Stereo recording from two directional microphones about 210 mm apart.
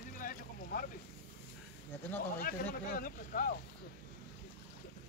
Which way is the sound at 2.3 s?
45° left (ahead or behind).